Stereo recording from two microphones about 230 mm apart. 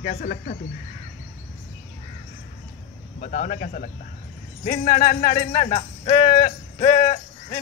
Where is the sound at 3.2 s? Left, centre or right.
Left.